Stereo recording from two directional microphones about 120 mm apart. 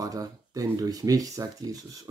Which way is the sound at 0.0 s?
30° right (ahead or behind).